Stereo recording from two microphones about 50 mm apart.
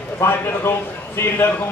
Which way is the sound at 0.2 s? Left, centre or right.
Left.